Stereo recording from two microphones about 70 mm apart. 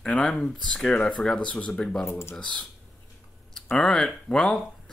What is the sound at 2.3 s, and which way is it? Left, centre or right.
Speech, centre.